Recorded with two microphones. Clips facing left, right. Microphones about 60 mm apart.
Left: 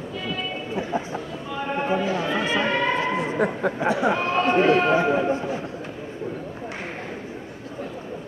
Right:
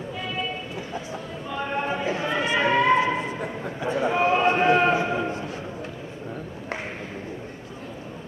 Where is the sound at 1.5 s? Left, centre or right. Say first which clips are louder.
Left 3 dB; centre.